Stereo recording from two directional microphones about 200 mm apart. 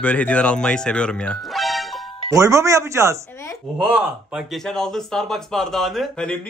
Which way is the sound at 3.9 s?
Centre (ahead or behind).